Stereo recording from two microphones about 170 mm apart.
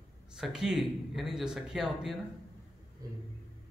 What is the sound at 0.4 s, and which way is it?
Speech, 5° right (ahead or behind).